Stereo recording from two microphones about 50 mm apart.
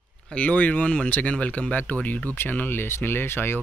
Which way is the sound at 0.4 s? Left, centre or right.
Left.